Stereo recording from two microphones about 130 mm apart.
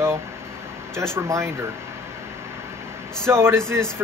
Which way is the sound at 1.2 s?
20° right (ahead or behind).